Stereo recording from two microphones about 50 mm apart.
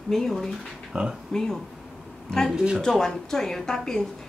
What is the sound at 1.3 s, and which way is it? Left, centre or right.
Speech, centre.